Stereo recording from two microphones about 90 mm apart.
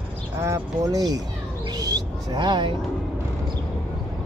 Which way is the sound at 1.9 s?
55° right (ahead or behind).